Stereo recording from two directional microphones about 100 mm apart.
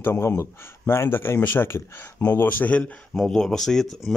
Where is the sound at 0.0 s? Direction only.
25° left (ahead or behind).